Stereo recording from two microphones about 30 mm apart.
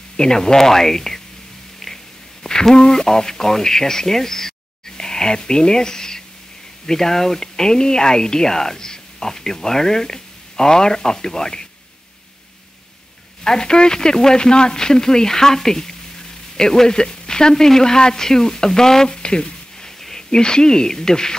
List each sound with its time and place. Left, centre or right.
0.2 s speech: left
2.7 s speech: left
13.4 s speech: left
19.2 s a sound: left
20.2 s speech: left